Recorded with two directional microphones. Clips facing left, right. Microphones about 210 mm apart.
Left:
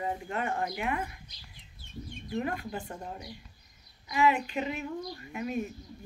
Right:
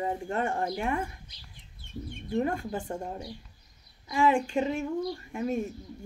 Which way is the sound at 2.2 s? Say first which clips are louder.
Right 5 dB; 25° right (ahead or behind).